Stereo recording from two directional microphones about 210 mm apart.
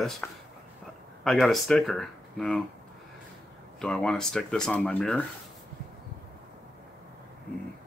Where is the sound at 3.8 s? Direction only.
5° left (ahead or behind).